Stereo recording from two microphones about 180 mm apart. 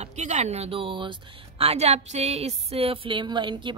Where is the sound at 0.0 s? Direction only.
40° right (ahead or behind).